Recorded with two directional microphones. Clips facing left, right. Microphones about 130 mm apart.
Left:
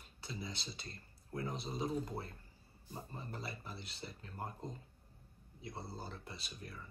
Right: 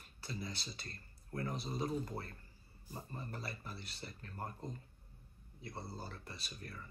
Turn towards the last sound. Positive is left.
turn(degrees=20)  # may be behind; listen again after turning